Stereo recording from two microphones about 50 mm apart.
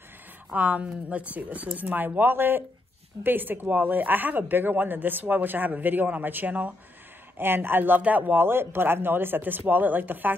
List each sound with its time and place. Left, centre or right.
0.5 s a woman's voice: right
7.3 s speech: right